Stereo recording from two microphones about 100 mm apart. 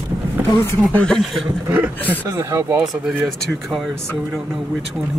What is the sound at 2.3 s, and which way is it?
Speech, 25° right (ahead or behind).